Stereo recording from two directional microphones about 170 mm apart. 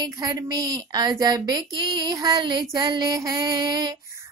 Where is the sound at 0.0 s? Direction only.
20° right (ahead or behind).